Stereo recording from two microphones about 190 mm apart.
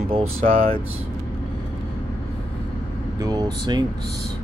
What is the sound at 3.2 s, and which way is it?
Speech, 20° right (ahead or behind).